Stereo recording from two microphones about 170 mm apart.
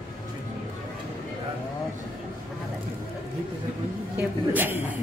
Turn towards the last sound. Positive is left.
turn(degrees=-10)  # may be behind; listen again after turning